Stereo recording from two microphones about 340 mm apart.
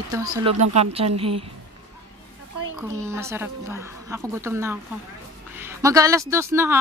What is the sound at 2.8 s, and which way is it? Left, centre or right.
A woman's voice, centre.